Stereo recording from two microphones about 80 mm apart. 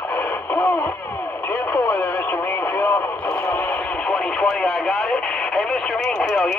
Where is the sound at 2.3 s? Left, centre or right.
Left.